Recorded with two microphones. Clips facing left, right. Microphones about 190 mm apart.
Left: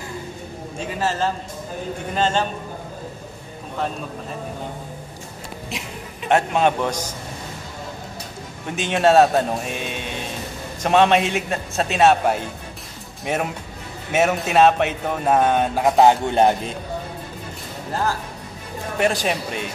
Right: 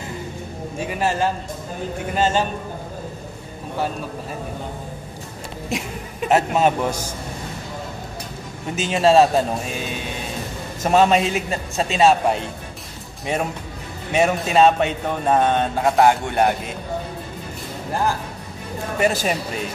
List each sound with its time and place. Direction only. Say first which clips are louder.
0.7 s speech: right 2 dB; 15° right (ahead or behind)
6.2 s a man's voice: right 1 dB; 5° right (ahead or behind)
8.7 s a man's voice: even; centre (ahead or behind); by 16.7 s 25° left (ahead or behind)
18.9 s a man's voice: even; centre (ahead or behind)